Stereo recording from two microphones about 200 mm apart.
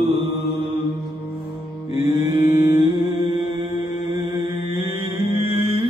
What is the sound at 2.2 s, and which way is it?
Mantra, 20° right (ahead or behind).